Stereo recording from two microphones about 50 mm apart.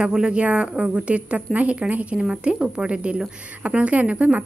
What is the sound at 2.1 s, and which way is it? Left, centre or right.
A woman's voice, centre.